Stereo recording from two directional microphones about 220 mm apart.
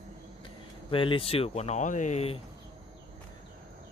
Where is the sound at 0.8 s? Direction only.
25° left (ahead or behind).